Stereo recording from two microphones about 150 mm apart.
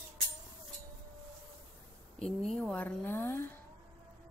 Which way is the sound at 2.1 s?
5° left (ahead or behind).